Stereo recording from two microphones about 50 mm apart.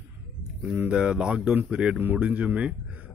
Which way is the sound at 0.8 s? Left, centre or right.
Right.